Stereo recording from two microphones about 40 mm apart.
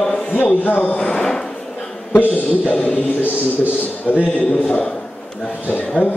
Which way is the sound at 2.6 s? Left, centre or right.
Left.